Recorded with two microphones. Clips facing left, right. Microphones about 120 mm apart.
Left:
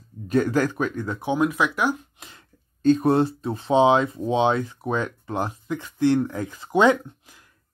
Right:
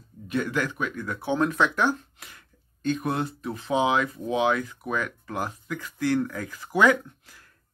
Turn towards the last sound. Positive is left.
turn(degrees=20)  # may be behind; listen again after turning